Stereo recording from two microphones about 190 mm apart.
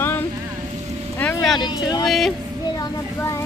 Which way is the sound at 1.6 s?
20° left (ahead or behind).